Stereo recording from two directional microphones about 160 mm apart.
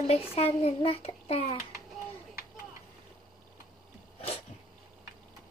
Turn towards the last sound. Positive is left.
turn(degrees=40)  # may be behind; listen again after turning